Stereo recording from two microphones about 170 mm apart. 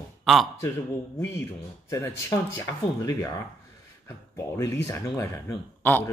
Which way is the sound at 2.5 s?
15° left (ahead or behind).